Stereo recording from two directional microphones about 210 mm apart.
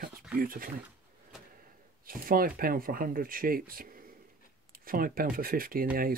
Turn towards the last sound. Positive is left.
turn(degrees=-45)  # may be behind; listen again after turning